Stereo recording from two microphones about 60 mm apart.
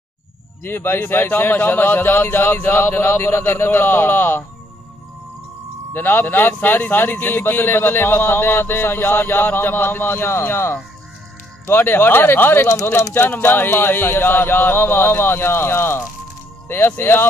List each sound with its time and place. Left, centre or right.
0.7 s a man's voice: left
5.9 s a man's voice: left